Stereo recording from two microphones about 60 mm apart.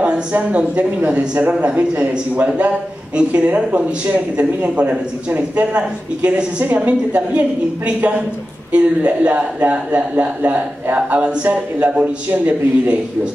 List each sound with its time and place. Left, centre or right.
0.0 s a man's voice: right